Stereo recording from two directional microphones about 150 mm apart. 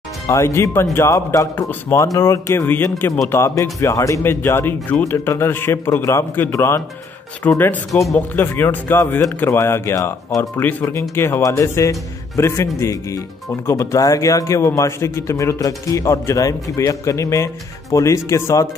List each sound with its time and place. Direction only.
0.3 s speech: 20° left (ahead or behind)
7.9 s speech: centre (ahead or behind)
8.4 s speech: 15° left (ahead or behind)